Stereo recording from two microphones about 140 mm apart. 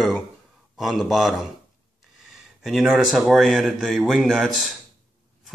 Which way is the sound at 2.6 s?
Centre (ahead or behind).